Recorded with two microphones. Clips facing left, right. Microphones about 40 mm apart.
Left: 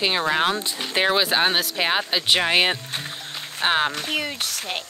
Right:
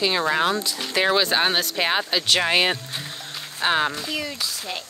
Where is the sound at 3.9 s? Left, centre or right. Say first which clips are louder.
Left 2 dB; left.